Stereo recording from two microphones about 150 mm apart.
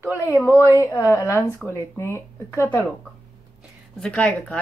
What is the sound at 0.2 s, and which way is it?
A woman's voice, 15° left (ahead or behind).